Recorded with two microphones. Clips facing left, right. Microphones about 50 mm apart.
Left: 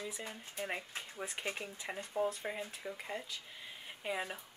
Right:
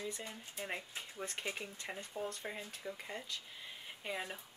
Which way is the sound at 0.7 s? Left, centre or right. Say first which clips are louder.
Even; centre.